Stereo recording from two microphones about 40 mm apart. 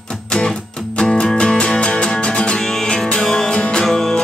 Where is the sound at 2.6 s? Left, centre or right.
Centre.